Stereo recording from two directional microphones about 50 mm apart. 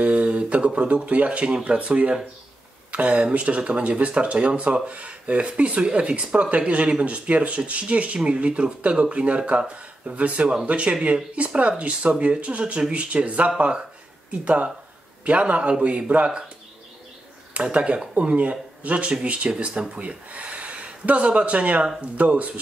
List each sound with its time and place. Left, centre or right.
0.0 s speech: right
17.6 s speech: right